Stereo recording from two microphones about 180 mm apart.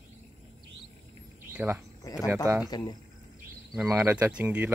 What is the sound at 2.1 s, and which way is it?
Speech, 20° left (ahead or behind).